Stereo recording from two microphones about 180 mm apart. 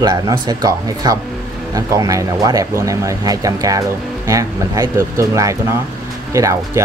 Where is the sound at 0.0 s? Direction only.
20° right (ahead or behind).